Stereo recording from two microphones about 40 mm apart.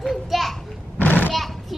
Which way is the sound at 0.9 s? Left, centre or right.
Left.